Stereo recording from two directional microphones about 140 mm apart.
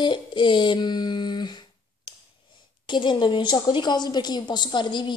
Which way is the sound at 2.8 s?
35° left (ahead or behind).